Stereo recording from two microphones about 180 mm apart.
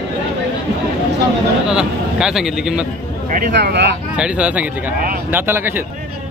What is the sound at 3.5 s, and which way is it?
Speech, 70° right (ahead or behind).